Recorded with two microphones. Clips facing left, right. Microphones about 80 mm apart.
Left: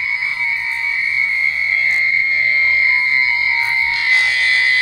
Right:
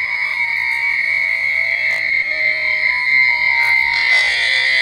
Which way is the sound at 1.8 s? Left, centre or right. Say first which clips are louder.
Left 2 dB; right.